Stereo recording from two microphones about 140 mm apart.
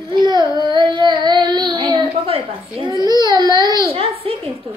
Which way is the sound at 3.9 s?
45° right (ahead or behind).